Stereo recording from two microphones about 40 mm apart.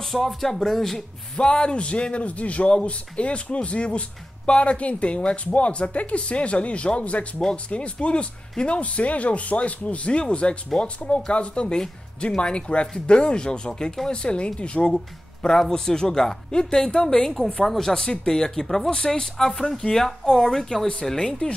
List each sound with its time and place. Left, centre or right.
0.0 s speech: centre
1.4 s speech: left
15.7 s speech: centre
20.1 s speech: centre